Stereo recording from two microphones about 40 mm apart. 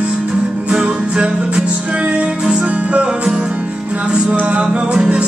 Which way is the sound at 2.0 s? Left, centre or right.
Right.